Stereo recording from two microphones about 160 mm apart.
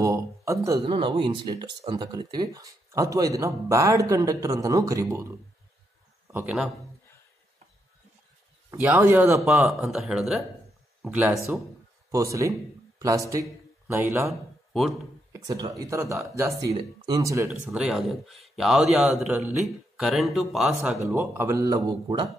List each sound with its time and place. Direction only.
0.0 s a sound: 20° right (ahead or behind)
0.7 s speech: 30° right (ahead or behind)
6.2 s a sound: 15° right (ahead or behind)
8.9 s speech: 15° right (ahead or behind)
9.4 s speech: centre (ahead or behind)
12.1 s a man's voice: 20° right (ahead or behind)
14.7 s speech: centre (ahead or behind)
15.3 s speech: 25° right (ahead or behind)
17.5 s speech: 5° right (ahead or behind)
21.1 s speech: 15° right (ahead or behind)